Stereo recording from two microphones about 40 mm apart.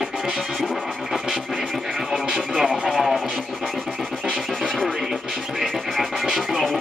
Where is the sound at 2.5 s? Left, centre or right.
Right.